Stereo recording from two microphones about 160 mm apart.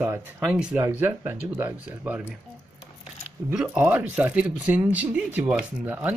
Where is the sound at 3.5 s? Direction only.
5° right (ahead or behind).